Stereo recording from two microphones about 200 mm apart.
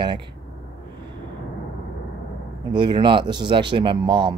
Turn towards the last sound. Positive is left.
turn(degrees=-25)  # may be behind; listen again after turning